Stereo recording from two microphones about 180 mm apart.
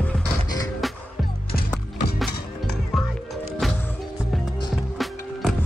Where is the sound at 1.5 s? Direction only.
60° left (ahead or behind).